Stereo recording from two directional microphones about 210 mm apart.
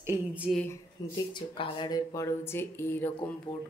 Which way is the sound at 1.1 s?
20° left (ahead or behind).